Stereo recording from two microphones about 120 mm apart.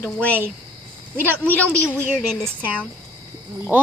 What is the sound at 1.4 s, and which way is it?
Speech, 10° left (ahead or behind).